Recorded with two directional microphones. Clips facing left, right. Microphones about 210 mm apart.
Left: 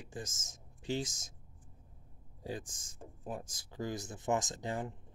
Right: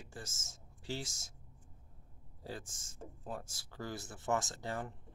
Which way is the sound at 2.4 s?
15° left (ahead or behind).